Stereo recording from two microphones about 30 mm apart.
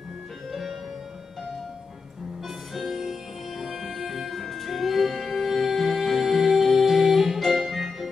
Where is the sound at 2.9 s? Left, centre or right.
Centre.